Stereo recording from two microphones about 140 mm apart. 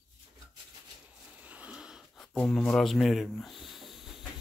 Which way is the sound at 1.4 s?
10° right (ahead or behind).